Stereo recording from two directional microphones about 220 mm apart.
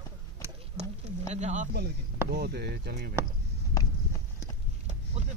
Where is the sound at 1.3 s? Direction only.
35° right (ahead or behind).